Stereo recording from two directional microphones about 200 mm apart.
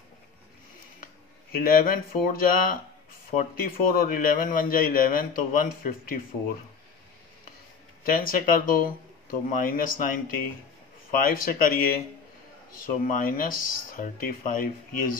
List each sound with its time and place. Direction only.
1.0 s a man's voice: 45° left (ahead or behind)
8.0 s a man's voice: 45° left (ahead or behind)